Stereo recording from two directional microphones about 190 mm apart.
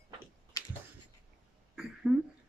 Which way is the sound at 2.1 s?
5° right (ahead or behind).